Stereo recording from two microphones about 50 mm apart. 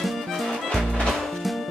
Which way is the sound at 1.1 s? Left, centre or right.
Centre.